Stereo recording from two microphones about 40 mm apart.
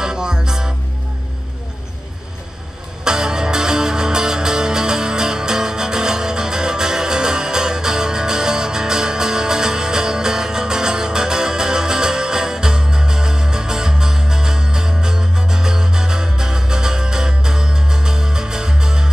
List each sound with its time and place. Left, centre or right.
0.0 s music: centre
3.0 s music: centre